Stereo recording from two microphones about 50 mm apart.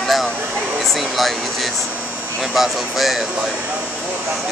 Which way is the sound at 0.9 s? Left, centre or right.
Centre.